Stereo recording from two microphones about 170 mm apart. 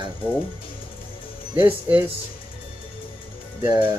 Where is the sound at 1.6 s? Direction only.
30° right (ahead or behind).